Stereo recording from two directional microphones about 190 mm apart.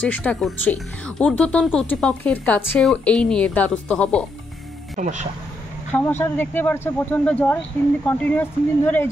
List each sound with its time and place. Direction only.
0.0 s speech: 5° left (ahead or behind)
4.9 s speech: 40° right (ahead or behind)
5.9 s speech: 10° left (ahead or behind)